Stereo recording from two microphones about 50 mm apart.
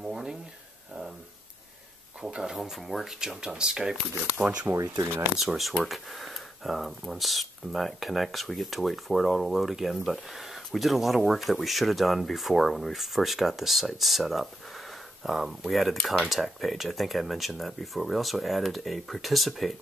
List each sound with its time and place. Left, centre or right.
0.0 s a sound: centre
2.2 s speech: centre
3.2 s speech: centre
4.4 s speech: right
4.7 s speech: right
5.4 s speech: centre